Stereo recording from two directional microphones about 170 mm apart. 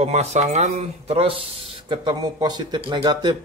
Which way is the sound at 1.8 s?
25° right (ahead or behind).